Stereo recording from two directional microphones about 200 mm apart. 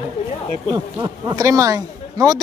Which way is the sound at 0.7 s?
20° right (ahead or behind).